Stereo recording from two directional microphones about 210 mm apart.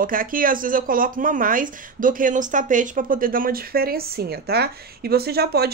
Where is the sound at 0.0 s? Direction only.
40° right (ahead or behind).